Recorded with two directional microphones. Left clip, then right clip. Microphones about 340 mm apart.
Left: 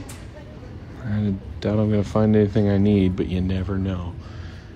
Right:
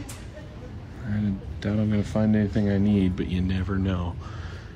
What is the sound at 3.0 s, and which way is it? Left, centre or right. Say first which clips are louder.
Speech: left 4 dB; centre.